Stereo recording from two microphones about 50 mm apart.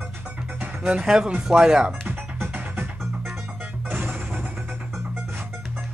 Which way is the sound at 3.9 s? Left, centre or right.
Right.